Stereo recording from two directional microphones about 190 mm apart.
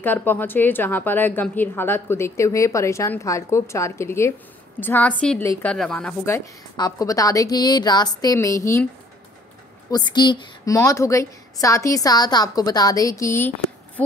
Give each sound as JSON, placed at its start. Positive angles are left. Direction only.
{"t": 0.0, "sound": "a woman's voice", "side_deg": 10}
{"t": 9.8, "sound": "a woman's voice", "side_deg": 20}